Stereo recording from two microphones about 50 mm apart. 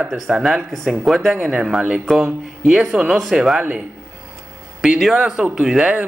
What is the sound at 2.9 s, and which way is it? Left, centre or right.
Speech, centre.